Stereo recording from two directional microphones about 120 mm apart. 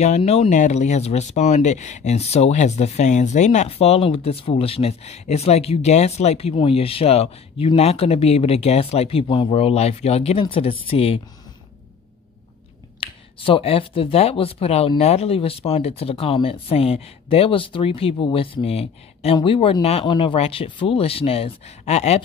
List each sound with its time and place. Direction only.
0.0 s speech: 65° left (ahead or behind)
10.4 s speech: 50° left (ahead or behind)
13.0 s speech: 45° left (ahead or behind); by 22.2 s 65° left (ahead or behind)